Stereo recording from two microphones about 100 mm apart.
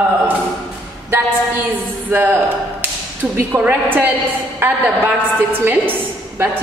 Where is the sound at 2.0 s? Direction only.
20° right (ahead or behind).